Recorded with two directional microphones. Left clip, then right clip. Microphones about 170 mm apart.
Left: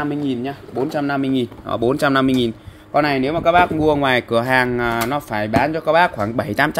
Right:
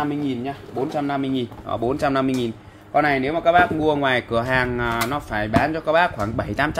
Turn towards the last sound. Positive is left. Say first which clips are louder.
# left 4 dB
turn(degrees=45)  # may be behind; listen again after turning